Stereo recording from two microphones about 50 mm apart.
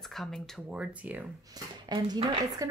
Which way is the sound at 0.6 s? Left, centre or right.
Right.